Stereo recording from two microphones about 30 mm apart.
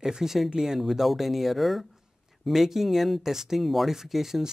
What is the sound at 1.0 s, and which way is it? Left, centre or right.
Speech, centre.